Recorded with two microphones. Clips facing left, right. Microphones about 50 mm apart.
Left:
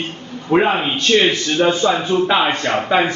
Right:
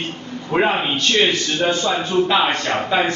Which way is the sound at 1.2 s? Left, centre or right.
Centre.